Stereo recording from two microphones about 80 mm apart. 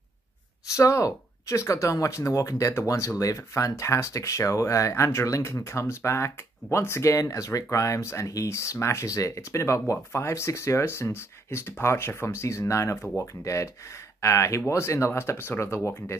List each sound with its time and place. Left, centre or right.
0.7 s speech: left